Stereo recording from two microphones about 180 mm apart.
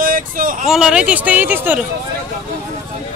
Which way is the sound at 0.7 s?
5° right (ahead or behind).